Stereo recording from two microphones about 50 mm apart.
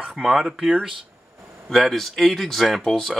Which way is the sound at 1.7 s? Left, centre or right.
Centre.